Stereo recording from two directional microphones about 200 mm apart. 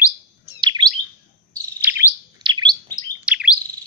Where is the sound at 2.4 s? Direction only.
20° right (ahead or behind).